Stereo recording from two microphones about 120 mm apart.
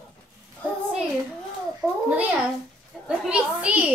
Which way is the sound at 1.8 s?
10° right (ahead or behind).